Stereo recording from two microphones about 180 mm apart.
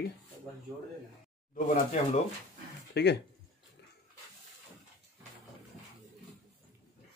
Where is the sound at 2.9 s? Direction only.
70° left (ahead or behind).